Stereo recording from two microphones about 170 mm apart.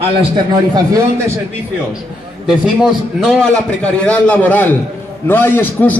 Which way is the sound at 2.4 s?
5° right (ahead or behind).